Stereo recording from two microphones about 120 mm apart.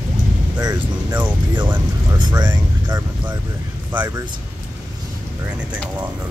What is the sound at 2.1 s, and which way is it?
Speech, 35° right (ahead or behind).